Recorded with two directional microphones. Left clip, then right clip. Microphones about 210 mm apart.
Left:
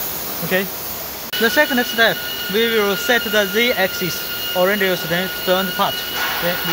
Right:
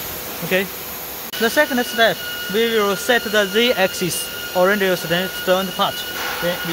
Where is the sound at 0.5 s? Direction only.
15° right (ahead or behind).